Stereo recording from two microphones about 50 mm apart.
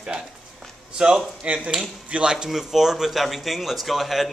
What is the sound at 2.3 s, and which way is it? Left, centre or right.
Speech, centre.